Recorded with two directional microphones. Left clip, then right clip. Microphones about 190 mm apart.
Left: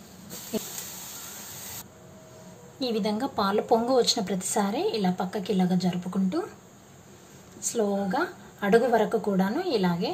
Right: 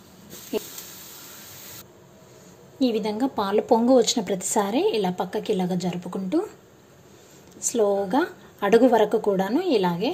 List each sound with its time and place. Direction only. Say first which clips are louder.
2.8 s a woman's voice: right 4 dB; 20° right (ahead or behind)
7.6 s a woman's voice: right 5 dB; 30° right (ahead or behind)